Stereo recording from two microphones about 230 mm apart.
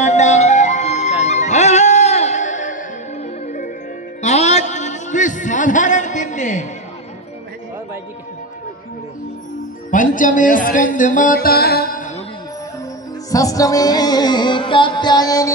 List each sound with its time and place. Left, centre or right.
0.0 s music: left
9.8 s speech: left
13.3 s music: centre